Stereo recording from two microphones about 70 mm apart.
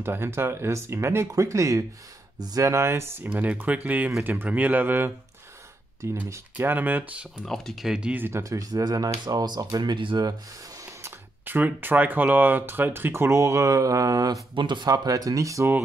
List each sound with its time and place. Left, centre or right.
0.0 s speech: right
2.3 s speech: right
2.6 s speech: right
3.3 s speech: right
6.0 s speech: right
6.5 s speech: right
7.4 s speech: centre
7.8 s speech: centre
8.3 s speech: right
11.4 s speech: right